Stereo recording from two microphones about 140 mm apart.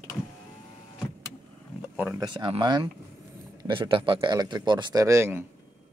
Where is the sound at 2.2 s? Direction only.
35° right (ahead or behind).